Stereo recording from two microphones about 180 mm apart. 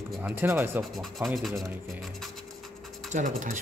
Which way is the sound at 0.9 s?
Centre (ahead or behind).